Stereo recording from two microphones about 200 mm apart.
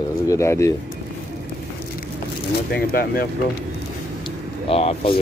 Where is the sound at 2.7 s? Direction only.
50° left (ahead or behind).